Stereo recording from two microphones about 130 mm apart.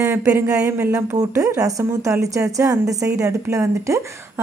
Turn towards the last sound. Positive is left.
turn(degrees=-25)  # may be behind; listen again after turning